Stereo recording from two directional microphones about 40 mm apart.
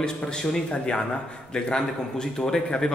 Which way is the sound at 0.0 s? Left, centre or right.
Left.